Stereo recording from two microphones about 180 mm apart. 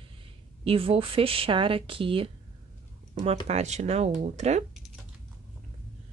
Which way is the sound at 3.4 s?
40° right (ahead or behind).